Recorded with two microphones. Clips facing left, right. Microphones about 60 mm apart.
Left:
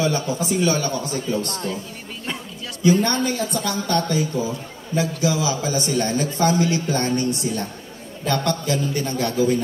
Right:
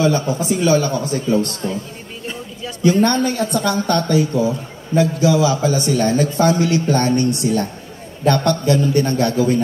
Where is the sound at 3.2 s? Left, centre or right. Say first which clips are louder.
Right 5 dB; right.